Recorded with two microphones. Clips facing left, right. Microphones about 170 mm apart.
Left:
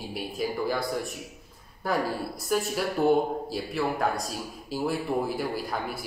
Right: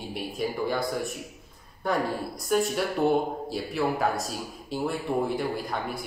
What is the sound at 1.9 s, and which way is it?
A man's voice, 5° left (ahead or behind).